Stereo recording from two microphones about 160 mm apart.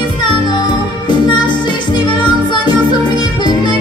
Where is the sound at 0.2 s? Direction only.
30° left (ahead or behind).